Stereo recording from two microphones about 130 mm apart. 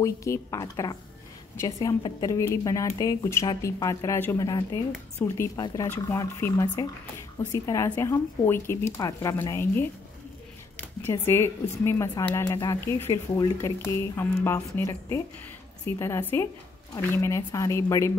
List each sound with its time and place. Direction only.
0.0 s speech: 25° left (ahead or behind)
5.2 s speech: 15° left (ahead or behind)
17.4 s a woman's voice: 35° left (ahead or behind)
17.6 s speech: 25° left (ahead or behind)